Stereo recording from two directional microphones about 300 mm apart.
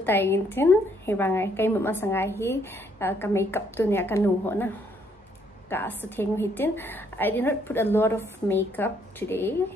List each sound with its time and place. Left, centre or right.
0.0 s a woman's voice: centre